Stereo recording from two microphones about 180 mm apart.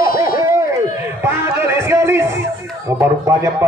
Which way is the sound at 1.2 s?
15° right (ahead or behind).